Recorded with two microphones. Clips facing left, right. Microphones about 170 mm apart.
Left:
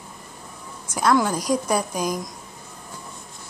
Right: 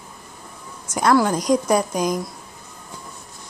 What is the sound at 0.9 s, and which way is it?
A woman's voice, 5° left (ahead or behind).